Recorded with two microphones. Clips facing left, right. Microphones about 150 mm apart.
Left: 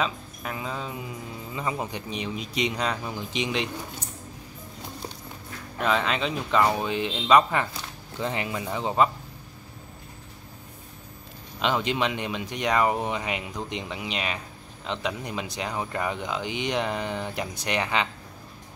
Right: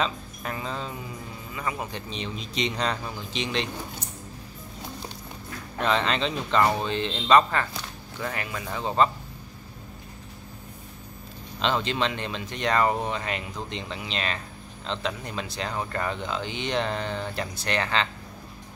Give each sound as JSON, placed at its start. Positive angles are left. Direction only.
{"t": 0.0, "sound": "speech", "side_deg": 5}
{"t": 1.5, "sound": "speech", "side_deg": 25}
{"t": 5.8, "sound": "speech", "side_deg": 5}
{"t": 8.2, "sound": "speech", "side_deg": 20}
{"t": 11.6, "sound": "speech", "side_deg": 15}